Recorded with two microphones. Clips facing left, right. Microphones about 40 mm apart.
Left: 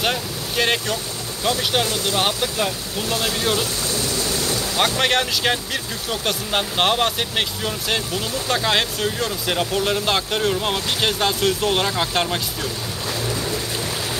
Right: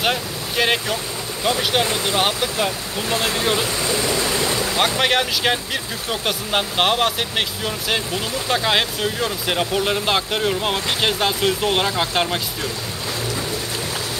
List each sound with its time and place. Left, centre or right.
0.0 s vehicle: centre
1.6 s speech: centre
1.9 s speech: right
2.2 s speech: centre
3.1 s speech: right
3.8 s boat: right
4.7 s speech: centre